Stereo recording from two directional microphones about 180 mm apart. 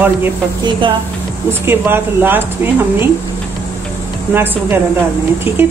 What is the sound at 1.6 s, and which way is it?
Speech, 10° right (ahead or behind).